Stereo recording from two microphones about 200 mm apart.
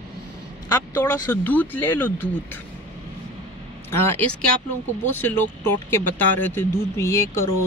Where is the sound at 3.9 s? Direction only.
10° left (ahead or behind).